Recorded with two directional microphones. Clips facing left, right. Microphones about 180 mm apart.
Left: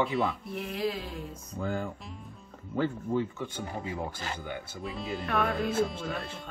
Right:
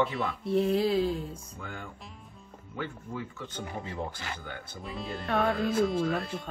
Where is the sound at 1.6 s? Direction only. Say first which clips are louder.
Left 11 dB; 35° left (ahead or behind).